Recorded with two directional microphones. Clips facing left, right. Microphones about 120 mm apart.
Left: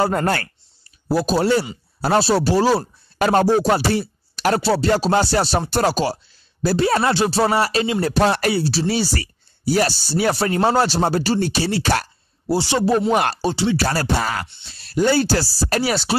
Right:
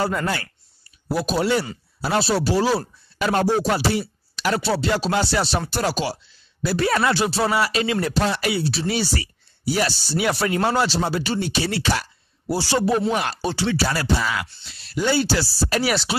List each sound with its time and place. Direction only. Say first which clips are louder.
0.0 s speech: left 4 dB; 45° left (ahead or behind)
1.0 s speech: left 4 dB; 35° left (ahead or behind)
8.1 s speech: left 4 dB; 50° left (ahead or behind)
12.4 s speech: left 2 dB; 25° left (ahead or behind)
13.1 s speech: left 5 dB; 45° left (ahead or behind)
13.4 s speech: left 3 dB; 25° left (ahead or behind)
13.7 s speech: left 2 dB; 45° left (ahead or behind)